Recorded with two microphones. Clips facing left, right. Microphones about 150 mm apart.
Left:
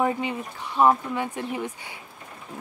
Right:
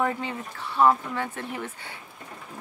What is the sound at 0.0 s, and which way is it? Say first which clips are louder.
Speech: left 3 dB; 15° left (ahead or behind).